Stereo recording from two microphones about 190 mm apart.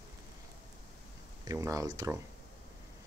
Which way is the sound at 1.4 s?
20° right (ahead or behind).